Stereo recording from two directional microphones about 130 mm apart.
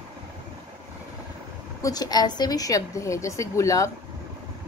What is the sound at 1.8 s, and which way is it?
A woman's voice, 30° left (ahead or behind).